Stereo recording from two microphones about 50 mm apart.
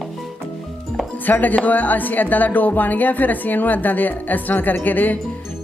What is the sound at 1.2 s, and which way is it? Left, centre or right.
A woman's voice, left.